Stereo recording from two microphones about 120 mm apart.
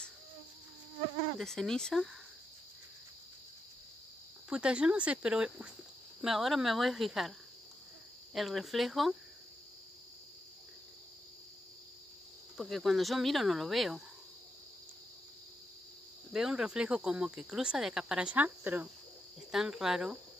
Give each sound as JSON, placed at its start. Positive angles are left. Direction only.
{"t": 1.4, "sound": "speech", "side_deg": 5}
{"t": 4.5, "sound": "speech", "side_deg": -10}
{"t": 8.4, "sound": "speech", "side_deg": 0}
{"t": 12.5, "sound": "speech", "side_deg": 0}
{"t": 16.3, "sound": "speech", "side_deg": -5}